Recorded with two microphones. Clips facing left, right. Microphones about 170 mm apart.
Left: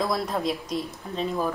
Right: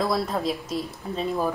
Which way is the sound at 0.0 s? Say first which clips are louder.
Right 1 dB; centre (ahead or behind).